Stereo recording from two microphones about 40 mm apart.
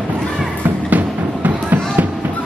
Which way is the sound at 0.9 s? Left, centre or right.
Right.